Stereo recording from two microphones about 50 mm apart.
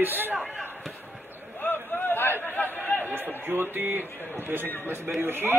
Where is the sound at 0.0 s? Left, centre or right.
Right.